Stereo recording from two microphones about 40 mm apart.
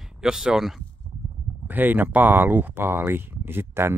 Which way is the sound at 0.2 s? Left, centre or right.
Centre.